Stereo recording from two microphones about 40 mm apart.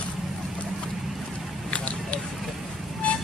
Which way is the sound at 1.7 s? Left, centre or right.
Left.